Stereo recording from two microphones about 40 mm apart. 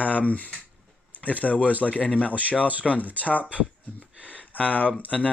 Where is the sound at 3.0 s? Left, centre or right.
Right.